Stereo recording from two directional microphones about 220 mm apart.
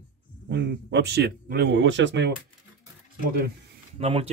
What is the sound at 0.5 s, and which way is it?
Speech, 50° right (ahead or behind).